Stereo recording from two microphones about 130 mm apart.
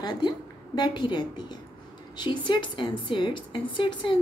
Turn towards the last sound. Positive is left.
turn(degrees=40)  # may be behind; listen again after turning